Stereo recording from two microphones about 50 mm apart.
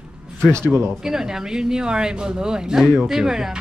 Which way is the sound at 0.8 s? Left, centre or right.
Centre.